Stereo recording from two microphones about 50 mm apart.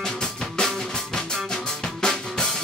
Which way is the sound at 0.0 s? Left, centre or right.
Centre.